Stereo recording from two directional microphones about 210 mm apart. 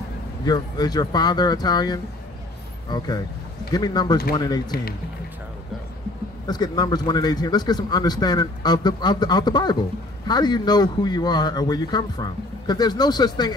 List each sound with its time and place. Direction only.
0.5 s speech: 20° left (ahead or behind)
4.7 s speech: 45° left (ahead or behind)
6.4 s speech: 20° left (ahead or behind)